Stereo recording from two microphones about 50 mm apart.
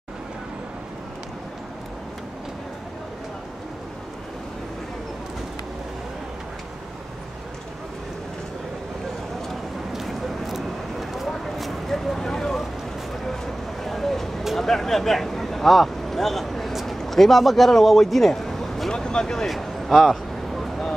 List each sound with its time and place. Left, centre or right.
9.5 s vehicle: centre
13.8 s a sound: centre
18.9 s vehicle: centre
19.4 s vehicle: centre